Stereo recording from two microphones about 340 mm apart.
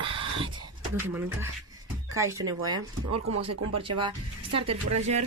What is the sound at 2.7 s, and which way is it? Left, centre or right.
Speech, right.